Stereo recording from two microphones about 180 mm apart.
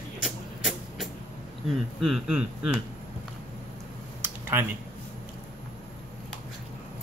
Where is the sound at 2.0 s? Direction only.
Centre (ahead or behind).